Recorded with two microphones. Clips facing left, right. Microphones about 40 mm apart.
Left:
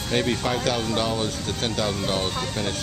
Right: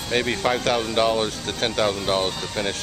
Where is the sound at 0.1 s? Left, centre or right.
Centre.